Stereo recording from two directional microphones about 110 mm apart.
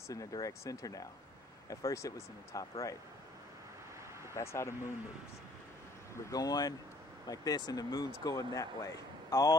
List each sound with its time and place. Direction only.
0.1 s speech: 30° left (ahead or behind)
4.3 s speech: 25° left (ahead or behind)
6.3 s speech: 35° left (ahead or behind)